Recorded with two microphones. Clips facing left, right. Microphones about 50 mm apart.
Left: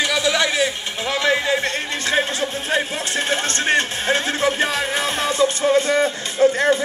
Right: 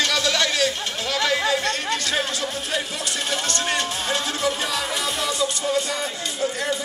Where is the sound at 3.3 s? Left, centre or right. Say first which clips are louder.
Left 5 dB; left.